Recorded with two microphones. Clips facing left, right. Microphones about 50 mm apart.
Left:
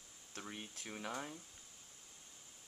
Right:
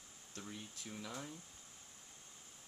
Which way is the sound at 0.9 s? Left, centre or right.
Left.